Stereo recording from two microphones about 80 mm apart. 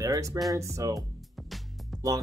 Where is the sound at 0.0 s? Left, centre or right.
Right.